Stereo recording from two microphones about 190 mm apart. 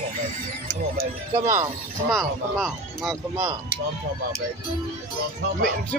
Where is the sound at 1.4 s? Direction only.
15° right (ahead or behind).